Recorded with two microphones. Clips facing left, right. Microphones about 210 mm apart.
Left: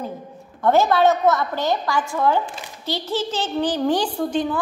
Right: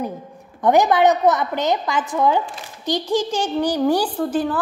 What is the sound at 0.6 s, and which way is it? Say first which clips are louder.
A woman's voice: right 1 dB; 15° right (ahead or behind).